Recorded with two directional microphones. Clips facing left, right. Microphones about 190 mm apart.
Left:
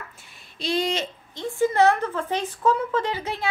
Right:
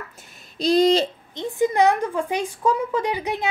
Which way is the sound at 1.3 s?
20° right (ahead or behind).